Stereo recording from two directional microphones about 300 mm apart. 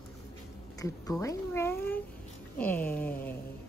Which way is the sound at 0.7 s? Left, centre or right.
Centre.